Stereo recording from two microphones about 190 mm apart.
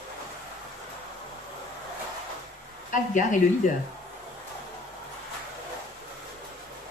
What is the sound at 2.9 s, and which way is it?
Speech, 40° left (ahead or behind).